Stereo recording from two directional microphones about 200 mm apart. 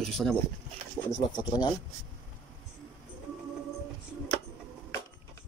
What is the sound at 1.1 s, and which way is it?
Speech, 20° left (ahead or behind).